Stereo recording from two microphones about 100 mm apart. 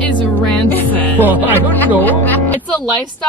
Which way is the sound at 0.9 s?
15° left (ahead or behind).